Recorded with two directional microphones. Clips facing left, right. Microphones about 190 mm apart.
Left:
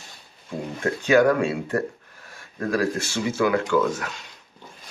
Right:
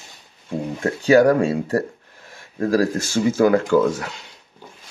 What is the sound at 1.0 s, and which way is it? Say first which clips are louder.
Speech: right 4 dB; 35° right (ahead or behind).